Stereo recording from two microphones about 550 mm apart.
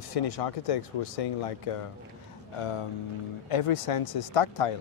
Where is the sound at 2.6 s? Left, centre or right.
Left.